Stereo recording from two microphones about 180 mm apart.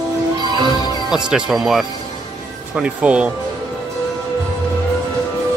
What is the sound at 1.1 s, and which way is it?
Speech, 5° right (ahead or behind).